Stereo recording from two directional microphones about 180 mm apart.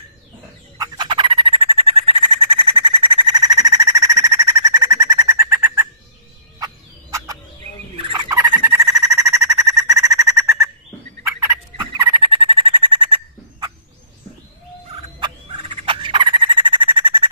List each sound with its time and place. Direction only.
0.7 s bird: 25° right (ahead or behind)
6.6 s gobble: 20° right (ahead or behind)
7.9 s a sound: 30° right (ahead or behind)
11.8 s owl: 25° right (ahead or behind)
15.0 s fowl: 30° right (ahead or behind)